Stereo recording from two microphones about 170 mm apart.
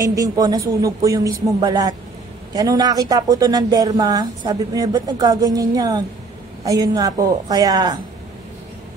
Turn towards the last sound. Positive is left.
turn(degrees=-25)  # may be behind; listen again after turning